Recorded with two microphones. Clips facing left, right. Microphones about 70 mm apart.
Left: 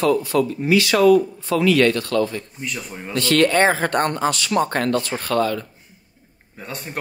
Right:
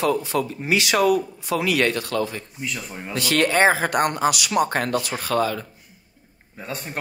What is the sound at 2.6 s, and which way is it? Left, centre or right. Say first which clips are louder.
Speech: left 1 dB; centre.